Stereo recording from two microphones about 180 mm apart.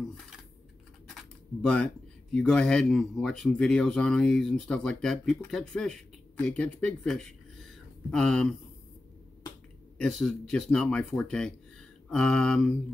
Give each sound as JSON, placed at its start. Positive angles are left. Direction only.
{"t": 1.0, "sound": "a sound", "side_deg": 5}
{"t": 2.3, "sound": "speech", "side_deg": 5}
{"t": 9.9, "sound": "speech", "side_deg": 0}